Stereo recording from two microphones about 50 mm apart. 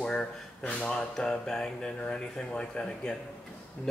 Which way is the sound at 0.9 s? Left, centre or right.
Centre.